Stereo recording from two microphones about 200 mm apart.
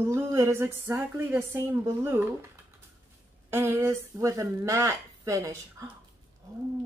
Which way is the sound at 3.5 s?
15° right (ahead or behind).